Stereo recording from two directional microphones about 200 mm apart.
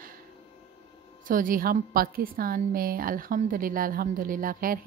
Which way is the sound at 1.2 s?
45° right (ahead or behind).